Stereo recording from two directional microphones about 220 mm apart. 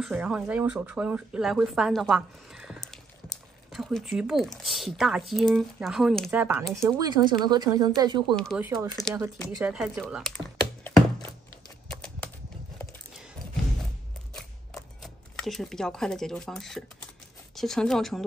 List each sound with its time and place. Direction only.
0.0 s speech: 5° right (ahead or behind)
7.0 s speech: 20° right (ahead or behind)
8.4 s speech: centre (ahead or behind)
9.6 s typing: 5° right (ahead or behind)
11.9 s horse: 5° left (ahead or behind)
15.0 s speech: centre (ahead or behind)